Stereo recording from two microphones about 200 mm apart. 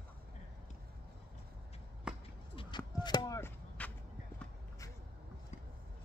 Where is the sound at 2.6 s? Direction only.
25° left (ahead or behind).